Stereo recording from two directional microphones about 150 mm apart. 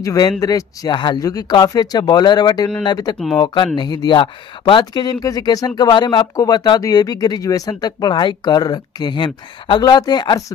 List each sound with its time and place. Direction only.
0.0 s speech: 20° left (ahead or behind)